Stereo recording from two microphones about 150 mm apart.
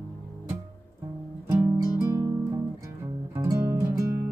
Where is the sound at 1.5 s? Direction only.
20° right (ahead or behind).